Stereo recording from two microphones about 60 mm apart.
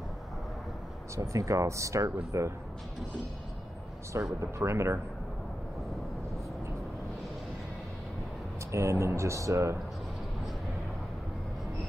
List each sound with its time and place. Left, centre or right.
1.1 s speech: right
4.4 s speech: right
8.7 s speech: right